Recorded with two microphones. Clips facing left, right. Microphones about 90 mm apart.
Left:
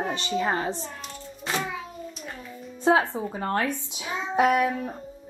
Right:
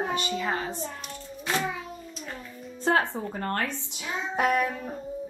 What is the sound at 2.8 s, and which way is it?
A woman's voice, 10° left (ahead or behind).